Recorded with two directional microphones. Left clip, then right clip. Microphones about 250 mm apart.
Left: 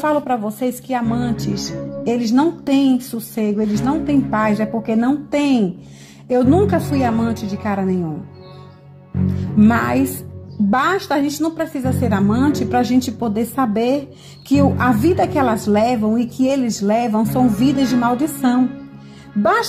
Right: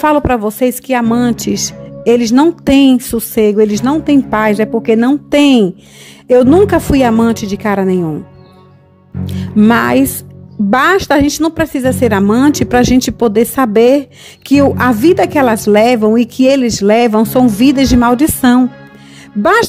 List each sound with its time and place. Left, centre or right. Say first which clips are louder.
0.0 s a woman's voice: right 7 dB; right
9.2 s music: right 4 dB; right
10.7 s a woman's voice: right 8 dB; right